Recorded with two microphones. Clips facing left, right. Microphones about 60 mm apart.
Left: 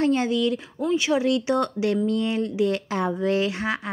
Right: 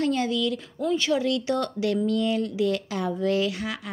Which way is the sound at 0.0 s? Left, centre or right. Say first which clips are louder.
Left 3 dB; left.